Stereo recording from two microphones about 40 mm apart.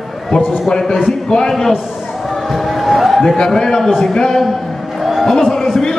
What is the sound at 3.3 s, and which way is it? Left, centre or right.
A man's voice, centre.